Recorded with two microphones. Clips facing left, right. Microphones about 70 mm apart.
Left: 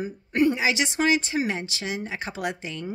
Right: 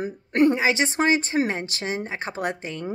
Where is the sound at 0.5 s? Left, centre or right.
Right.